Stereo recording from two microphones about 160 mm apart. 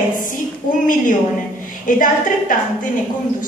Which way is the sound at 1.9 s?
55° left (ahead or behind).